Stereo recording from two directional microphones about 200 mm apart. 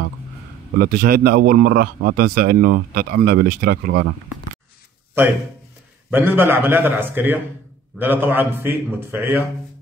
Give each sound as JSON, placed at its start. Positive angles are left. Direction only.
{"t": 0.7, "sound": "a man's voice", "side_deg": -50}
{"t": 6.0, "sound": "a man's voice", "side_deg": -10}